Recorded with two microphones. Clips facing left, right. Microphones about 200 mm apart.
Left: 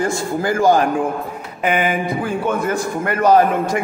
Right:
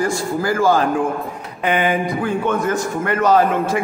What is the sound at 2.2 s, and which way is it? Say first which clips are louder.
Speech: right 1 dB; 10° left (ahead or behind).